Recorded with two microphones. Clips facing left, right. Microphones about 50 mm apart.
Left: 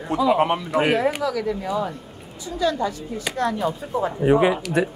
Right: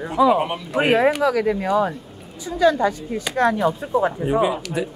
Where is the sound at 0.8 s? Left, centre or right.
Right.